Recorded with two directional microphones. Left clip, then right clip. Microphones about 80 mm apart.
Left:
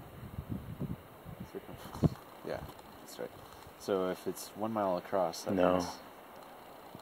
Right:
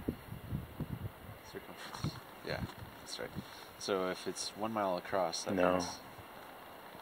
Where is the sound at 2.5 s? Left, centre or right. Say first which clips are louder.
Left 1 dB; left.